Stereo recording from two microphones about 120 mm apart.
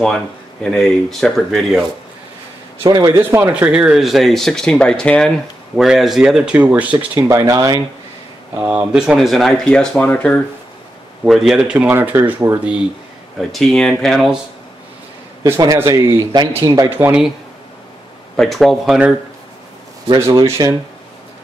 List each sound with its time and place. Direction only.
0.7 s speech: 5° left (ahead or behind)
2.9 s speech: 35° right (ahead or behind)
3.2 s speech: 15° right (ahead or behind)
7.2 s speech: 25° right (ahead or behind)
8.5 s speech: 10° right (ahead or behind); by 10.4 s 10° left (ahead or behind)
11.2 s speech: 5° right (ahead or behind)
13.4 s speech: centre (ahead or behind)
15.6 s speech: 25° right (ahead or behind)
18.3 s speech: centre (ahead or behind)
20.4 s speech: 25° right (ahead or behind)